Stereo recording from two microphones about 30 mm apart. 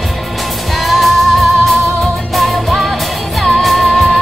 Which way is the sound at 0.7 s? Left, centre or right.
Centre.